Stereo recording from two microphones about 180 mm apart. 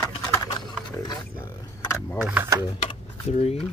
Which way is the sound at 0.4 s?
25° left (ahead or behind).